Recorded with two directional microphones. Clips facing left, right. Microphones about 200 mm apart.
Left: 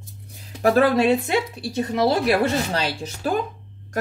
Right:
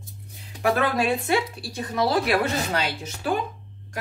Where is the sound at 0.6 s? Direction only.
30° left (ahead or behind).